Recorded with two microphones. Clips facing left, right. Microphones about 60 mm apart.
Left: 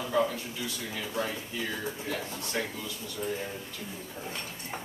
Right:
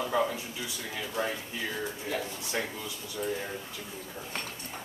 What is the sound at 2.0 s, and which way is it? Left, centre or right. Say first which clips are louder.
Speech: right 1 dB; centre.